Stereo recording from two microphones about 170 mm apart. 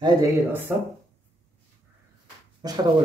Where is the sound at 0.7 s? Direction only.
10° right (ahead or behind).